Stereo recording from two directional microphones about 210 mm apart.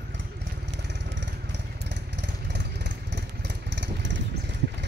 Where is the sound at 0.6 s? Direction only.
55° right (ahead or behind).